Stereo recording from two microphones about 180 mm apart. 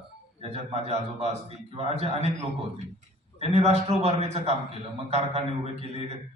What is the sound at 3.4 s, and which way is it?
A man's voice, 35° right (ahead or behind).